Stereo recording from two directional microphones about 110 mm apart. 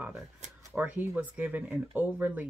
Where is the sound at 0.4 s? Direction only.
90° right.